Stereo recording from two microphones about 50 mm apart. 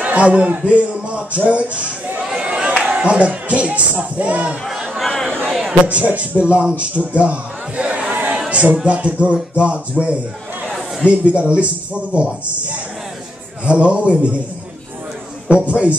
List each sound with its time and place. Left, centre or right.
0.0 s a man's voice: right
1.5 s a sound: right
2.8 s speech: centre
4.2 s music: right
4.6 s chatter: centre
5.5 s a sound: centre
5.9 s music: right
6.8 s a sound: right
8.8 s music: right
10.0 s a man's voice: centre
11.1 s music: right
13.7 s music: right
15.5 s music: right